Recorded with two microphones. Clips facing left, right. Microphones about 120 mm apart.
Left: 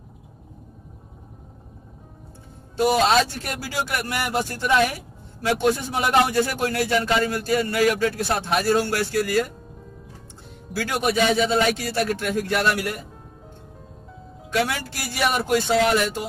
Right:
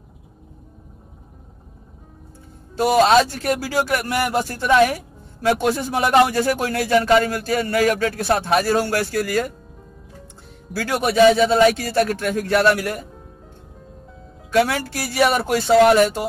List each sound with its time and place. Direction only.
2.8 s speech: 40° right (ahead or behind)
10.9 s speech: 40° right (ahead or behind)
14.5 s speech: 45° right (ahead or behind)